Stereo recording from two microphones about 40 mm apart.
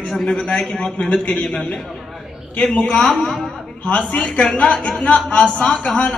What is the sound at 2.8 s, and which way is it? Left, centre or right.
Speech, centre.